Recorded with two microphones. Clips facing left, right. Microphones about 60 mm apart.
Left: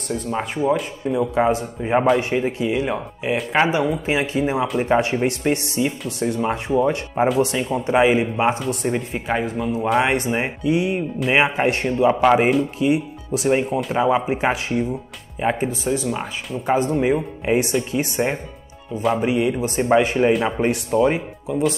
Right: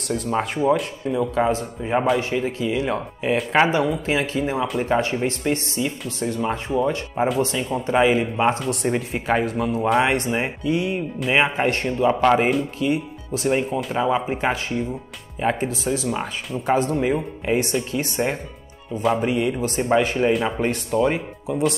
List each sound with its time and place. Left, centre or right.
0.1 s speech: centre
3.7 s speech: centre
19.3 s speech: centre
21.5 s speech: centre